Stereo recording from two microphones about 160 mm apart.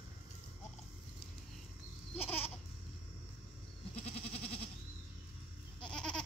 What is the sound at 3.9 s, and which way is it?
Goat, 40° left (ahead or behind).